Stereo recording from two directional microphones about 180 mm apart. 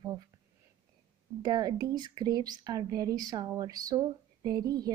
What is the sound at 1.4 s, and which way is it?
A woman's voice, 20° right (ahead or behind).